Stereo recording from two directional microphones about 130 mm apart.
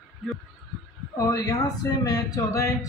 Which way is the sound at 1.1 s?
25° left (ahead or behind).